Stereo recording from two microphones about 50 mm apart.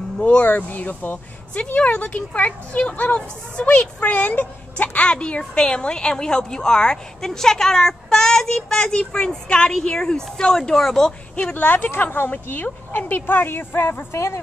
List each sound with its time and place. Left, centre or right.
0.2 s speech: left
0.5 s speech: left; by 11.1 s centre
11.5 s speech: left
14.1 s a woman's voice: left